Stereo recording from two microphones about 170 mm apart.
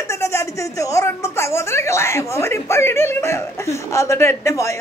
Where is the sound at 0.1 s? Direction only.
15° left (ahead or behind).